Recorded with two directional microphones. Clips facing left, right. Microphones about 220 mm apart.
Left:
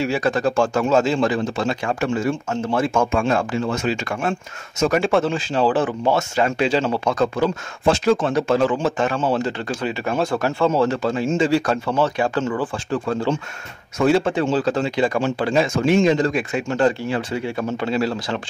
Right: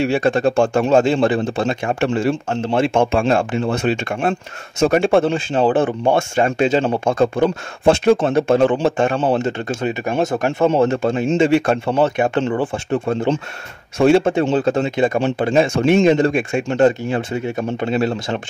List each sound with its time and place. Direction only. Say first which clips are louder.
0.0 s speech: right 4 dB; 25° right (ahead or behind)